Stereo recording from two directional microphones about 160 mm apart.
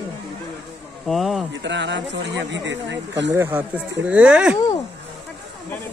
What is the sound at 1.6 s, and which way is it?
Speech, 90° right.